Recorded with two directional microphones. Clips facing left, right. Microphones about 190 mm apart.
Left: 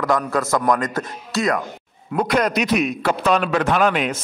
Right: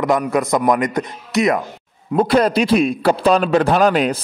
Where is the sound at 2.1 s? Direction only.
30° right (ahead or behind).